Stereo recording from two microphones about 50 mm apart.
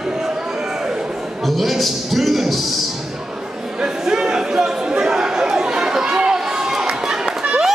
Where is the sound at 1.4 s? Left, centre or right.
Centre.